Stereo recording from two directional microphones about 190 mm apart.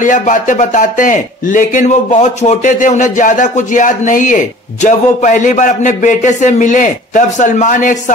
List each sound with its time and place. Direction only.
0.0 s speech: 40° left (ahead or behind)